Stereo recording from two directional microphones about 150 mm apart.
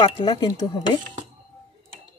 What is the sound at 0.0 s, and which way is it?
Speech, 30° left (ahead or behind).